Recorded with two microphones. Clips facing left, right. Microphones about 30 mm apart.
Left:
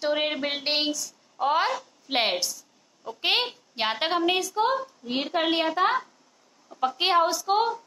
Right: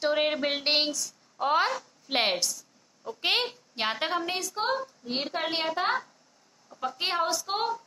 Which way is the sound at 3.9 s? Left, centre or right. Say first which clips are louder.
Left 5 dB; left.